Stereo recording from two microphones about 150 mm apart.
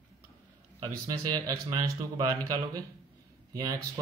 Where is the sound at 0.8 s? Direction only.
25° right (ahead or behind).